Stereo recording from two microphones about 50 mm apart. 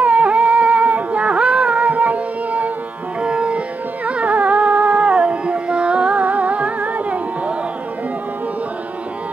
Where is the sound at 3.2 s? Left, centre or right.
Right.